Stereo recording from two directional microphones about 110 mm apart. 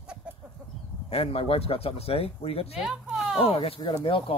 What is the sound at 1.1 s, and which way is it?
Speech, 60° left (ahead or behind).